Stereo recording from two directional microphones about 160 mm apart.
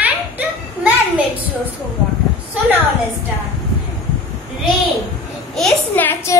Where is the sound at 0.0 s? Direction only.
10° right (ahead or behind).